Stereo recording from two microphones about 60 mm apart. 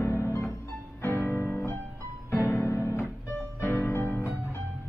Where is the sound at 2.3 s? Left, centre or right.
Left.